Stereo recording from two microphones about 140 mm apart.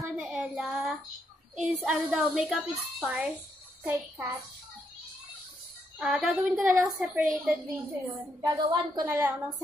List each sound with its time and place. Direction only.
0.0 s child singing: 5° right (ahead or behind)
1.5 s a woman's voice: centre (ahead or behind)
3.8 s a child's voice: 20° right (ahead or behind)
5.9 s a woman's voice: 5° right (ahead or behind)
8.5 s a woman's voice: 35° right (ahead or behind)
9.0 s a woman's voice: 15° right (ahead or behind)